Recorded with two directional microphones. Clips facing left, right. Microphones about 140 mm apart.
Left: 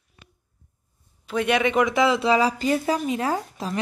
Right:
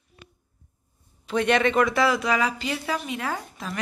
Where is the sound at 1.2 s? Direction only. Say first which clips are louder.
Even; 10° left (ahead or behind).